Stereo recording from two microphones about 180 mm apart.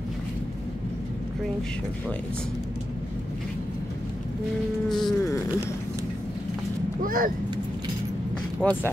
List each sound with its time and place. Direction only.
4.8 s a sound: centre (ahead or behind)
7.0 s speech: 50° right (ahead or behind)
8.5 s speech: 10° left (ahead or behind)